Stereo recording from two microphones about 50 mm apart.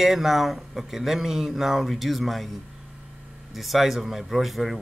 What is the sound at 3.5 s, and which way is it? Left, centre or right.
A man's voice, centre.